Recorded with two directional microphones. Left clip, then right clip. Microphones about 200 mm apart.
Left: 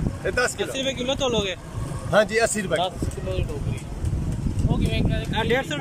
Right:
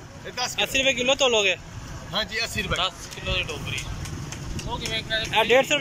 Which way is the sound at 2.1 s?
70° left (ahead or behind).